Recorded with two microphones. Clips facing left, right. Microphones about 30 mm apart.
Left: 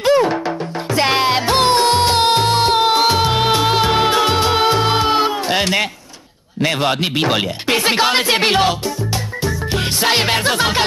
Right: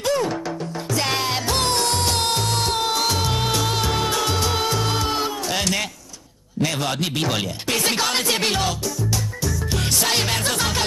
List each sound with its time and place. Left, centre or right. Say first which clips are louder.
0.0 s music: left 8 dB; left
6.6 s speech: left 6 dB; left